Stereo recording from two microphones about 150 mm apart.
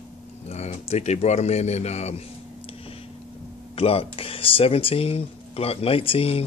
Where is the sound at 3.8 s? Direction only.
40° left (ahead or behind).